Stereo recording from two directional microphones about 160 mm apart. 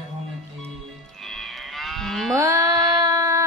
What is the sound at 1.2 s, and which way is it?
Moo, centre (ahead or behind).